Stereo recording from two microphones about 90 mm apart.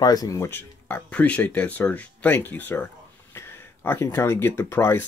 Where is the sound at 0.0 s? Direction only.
45° left (ahead or behind).